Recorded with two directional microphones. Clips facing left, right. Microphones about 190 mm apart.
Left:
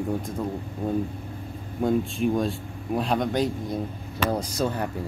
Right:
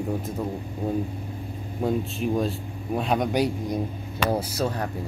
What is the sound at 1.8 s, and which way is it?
Speech, 5° right (ahead or behind).